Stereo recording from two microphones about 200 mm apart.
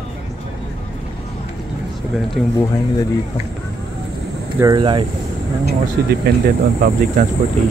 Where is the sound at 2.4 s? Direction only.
Centre (ahead or behind).